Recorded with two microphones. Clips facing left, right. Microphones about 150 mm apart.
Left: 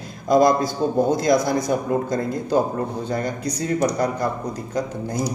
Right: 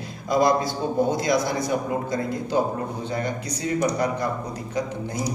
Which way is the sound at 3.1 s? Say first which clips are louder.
Left 3 dB; 40° left (ahead or behind).